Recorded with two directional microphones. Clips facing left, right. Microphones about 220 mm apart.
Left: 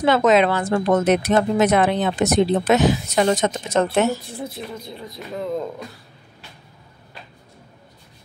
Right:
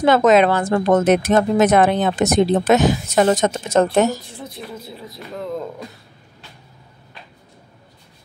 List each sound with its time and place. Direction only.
0.0 s a woman's voice: 45° right (ahead or behind)
4.7 s speech: 5° right (ahead or behind)